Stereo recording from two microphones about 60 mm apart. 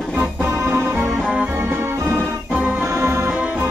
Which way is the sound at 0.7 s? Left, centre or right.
Right.